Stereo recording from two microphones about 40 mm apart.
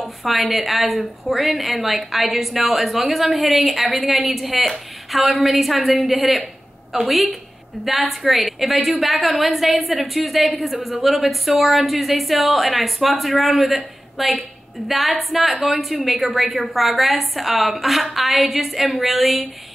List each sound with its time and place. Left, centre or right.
0.0 s a woman's voice: centre